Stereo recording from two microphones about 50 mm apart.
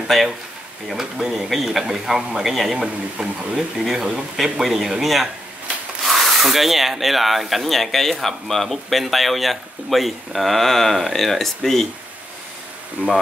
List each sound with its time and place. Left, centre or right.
0.1 s speech: centre
1.3 s speech: centre
2.8 s a man's voice: centre